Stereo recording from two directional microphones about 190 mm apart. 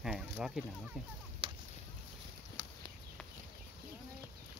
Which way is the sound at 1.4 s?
30° right (ahead or behind).